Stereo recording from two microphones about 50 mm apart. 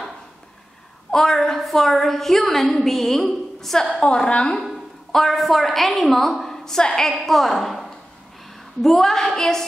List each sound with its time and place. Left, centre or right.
1.1 s a woman's voice: centre
3.9 s a woman's voice: centre
5.1 s a woman's voice: centre
8.8 s a sound: centre